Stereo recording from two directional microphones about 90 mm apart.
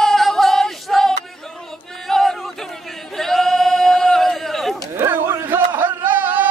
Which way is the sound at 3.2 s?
5° left (ahead or behind).